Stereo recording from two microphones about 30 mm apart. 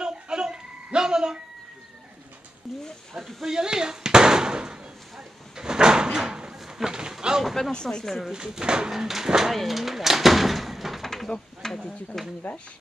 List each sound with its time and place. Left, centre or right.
0.0 s a sound: right
2.7 s speech: centre
3.4 s speech: right
5.6 s a sound: right
8.0 s speech: centre
8.3 s speech: right
8.9 s speech: centre
9.5 s door: centre
11.2 s a sound: centre
12.1 s speech: centre